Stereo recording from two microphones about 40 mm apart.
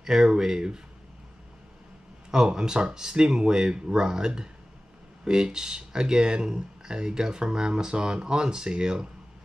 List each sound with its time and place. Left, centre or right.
0.0 s speech: centre
2.3 s speech: centre